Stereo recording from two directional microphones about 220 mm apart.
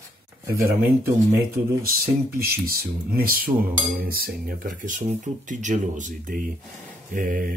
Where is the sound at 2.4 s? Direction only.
45° right (ahead or behind).